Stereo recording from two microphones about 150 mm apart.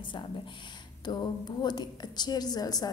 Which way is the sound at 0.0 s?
30° left (ahead or behind).